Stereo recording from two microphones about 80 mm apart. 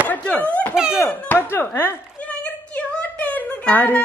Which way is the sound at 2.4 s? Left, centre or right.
Centre.